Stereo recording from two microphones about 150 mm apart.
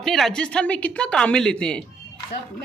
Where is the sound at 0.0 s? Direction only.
Centre (ahead or behind).